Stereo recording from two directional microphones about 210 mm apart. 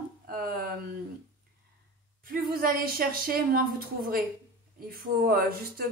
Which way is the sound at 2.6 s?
45° right (ahead or behind).